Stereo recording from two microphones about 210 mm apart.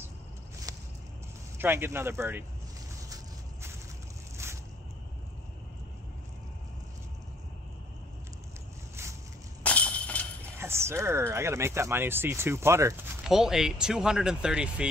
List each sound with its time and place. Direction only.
0.7 s walk: 15° right (ahead or behind)
1.6 s speech: 10° right (ahead or behind)
9.6 s a sound: 5° left (ahead or behind)
10.6 s speech: 10° right (ahead or behind)